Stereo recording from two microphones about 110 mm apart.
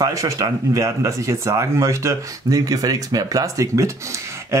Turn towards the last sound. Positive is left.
turn(degrees=-30)  # may be behind; listen again after turning